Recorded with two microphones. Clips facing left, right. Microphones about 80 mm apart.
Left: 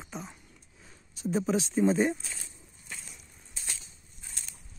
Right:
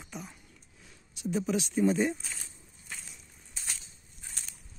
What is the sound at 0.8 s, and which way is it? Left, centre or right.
Speech, left.